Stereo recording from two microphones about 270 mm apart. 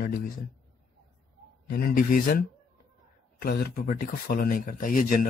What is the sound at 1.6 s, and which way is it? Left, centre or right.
Speech, left.